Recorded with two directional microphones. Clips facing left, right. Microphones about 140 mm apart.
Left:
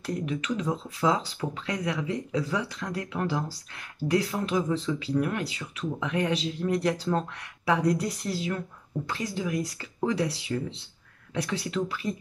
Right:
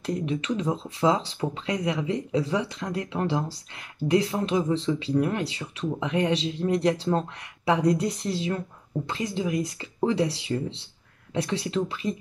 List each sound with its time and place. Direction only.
0.0 s speech: 25° right (ahead or behind)